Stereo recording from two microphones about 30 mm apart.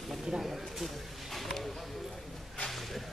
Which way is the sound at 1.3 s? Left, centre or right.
Centre.